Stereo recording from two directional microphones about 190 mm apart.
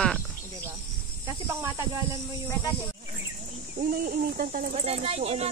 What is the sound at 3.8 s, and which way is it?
Speech, 45° right (ahead or behind).